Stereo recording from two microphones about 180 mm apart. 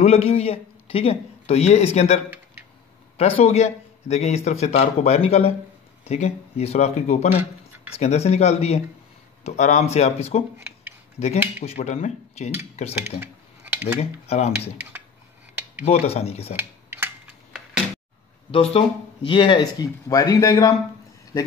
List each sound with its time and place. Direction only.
0.0 s a man's voice: 35° left (ahead or behind)
3.2 s a man's voice: 35° left (ahead or behind)
10.6 s a sound: 10° right (ahead or behind)
11.6 s a man's voice: 35° left (ahead or behind)
13.2 s a sound: 10° right (ahead or behind)
13.9 s a man's voice: 35° left (ahead or behind)
15.8 s a man's voice: 35° left (ahead or behind)
16.5 s a sound: 10° right (ahead or behind)
18.5 s speech: 35° left (ahead or behind); by 20.7 s 15° left (ahead or behind)